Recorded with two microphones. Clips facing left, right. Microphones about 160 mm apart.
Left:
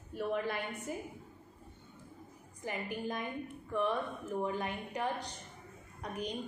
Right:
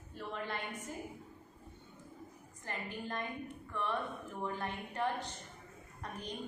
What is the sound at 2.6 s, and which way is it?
A woman's voice, 15° left (ahead or behind).